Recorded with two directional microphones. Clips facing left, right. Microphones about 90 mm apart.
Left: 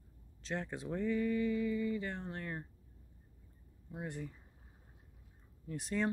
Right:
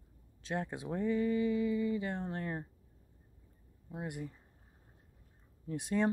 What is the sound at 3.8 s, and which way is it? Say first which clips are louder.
Speech: right 2 dB; 15° right (ahead or behind).